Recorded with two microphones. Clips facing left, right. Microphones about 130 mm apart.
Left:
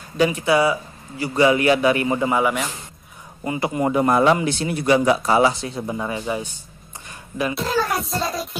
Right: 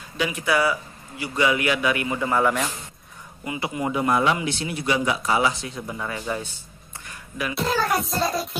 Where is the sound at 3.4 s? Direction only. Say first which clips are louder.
Left 5 dB; 45° left (ahead or behind); by 6.6 s 15° left (ahead or behind).